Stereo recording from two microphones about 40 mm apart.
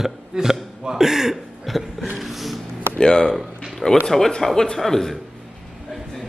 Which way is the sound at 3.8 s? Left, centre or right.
Centre.